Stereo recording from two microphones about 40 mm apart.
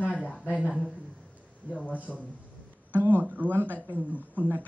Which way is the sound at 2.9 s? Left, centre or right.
Right.